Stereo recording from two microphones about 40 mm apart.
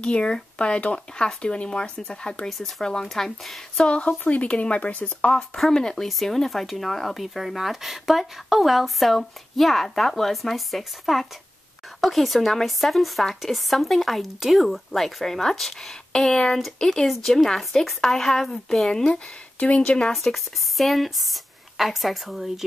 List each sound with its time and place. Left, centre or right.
0.0 s a woman's voice: left
4.3 s speech: left
5.6 s a woman's voice: centre
6.0 s a woman's voice: centre
19.1 s speech: left
20.7 s speech: centre